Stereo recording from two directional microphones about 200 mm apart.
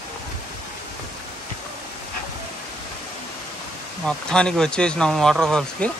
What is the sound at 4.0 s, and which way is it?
Speech, 5° left (ahead or behind).